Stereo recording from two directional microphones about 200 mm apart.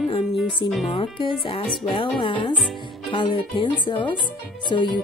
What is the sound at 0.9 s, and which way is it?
Speech, 25° left (ahead or behind).